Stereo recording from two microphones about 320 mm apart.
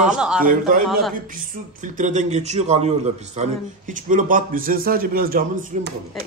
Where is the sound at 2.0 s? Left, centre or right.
Right.